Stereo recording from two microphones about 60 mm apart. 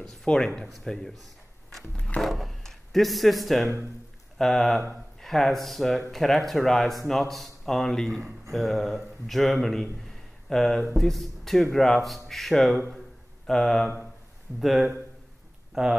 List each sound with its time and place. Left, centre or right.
0.0 s speech: centre
2.0 s music: centre
2.2 s a sound: centre
4.4 s a man's voice: centre